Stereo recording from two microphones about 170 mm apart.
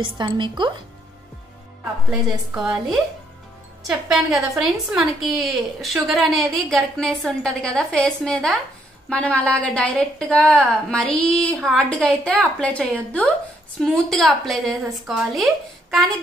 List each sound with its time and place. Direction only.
0.0 s a woman's voice: 25° right (ahead or behind)
2.0 s a woman's voice: centre (ahead or behind)
3.8 s a woman's voice: centre (ahead or behind)